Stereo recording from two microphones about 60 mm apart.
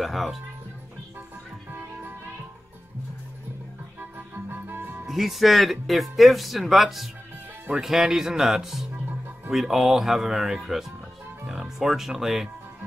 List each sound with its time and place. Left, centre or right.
0.0 s speech: centre
1.7 s music: right
4.0 s music: right
5.0 s speech: centre